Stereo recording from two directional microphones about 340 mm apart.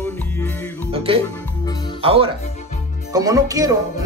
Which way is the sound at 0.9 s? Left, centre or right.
Centre.